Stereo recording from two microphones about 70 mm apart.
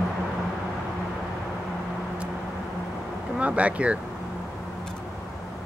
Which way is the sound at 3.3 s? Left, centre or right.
Centre.